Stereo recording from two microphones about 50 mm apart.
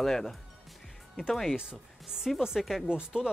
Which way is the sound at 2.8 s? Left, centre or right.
Centre.